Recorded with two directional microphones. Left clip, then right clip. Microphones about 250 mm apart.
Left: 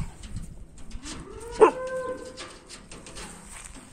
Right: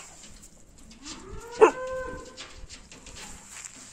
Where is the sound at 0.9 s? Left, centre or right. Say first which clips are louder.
Left 2 dB; left.